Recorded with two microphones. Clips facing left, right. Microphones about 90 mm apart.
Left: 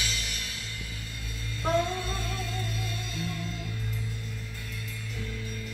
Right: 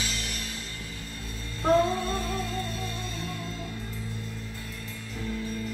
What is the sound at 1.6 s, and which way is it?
Music, 35° right (ahead or behind).